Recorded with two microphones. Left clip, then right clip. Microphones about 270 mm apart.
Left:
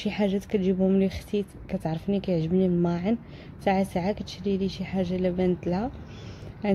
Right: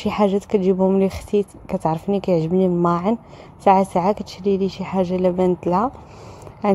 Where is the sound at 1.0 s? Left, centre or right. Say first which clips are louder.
Right 9 dB; right.